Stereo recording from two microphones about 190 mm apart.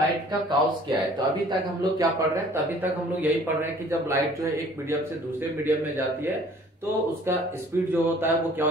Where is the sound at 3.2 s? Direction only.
15° right (ahead or behind).